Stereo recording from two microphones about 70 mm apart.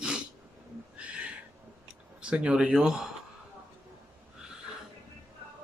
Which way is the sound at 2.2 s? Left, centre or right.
Centre.